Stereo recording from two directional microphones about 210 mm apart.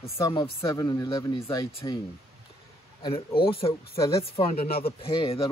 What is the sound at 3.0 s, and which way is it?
Speech, 25° left (ahead or behind).